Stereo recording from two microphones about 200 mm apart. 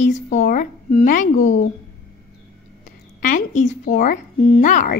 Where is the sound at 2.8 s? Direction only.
40° left (ahead or behind).